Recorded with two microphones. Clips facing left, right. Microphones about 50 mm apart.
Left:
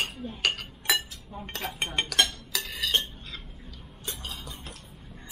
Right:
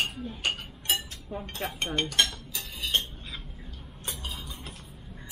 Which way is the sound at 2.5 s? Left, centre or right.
Left.